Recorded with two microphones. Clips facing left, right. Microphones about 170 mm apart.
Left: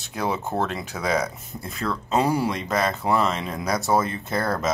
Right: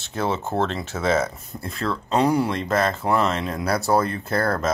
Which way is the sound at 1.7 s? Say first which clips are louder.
Right 1 dB; centre (ahead or behind).